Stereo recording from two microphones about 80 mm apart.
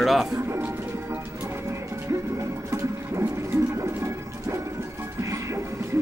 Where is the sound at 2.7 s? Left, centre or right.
Right.